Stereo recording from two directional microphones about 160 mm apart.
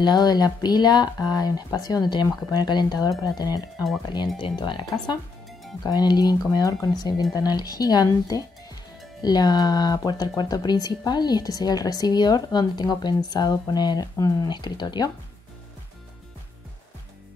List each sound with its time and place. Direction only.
0.0 s speech: 25° left (ahead or behind)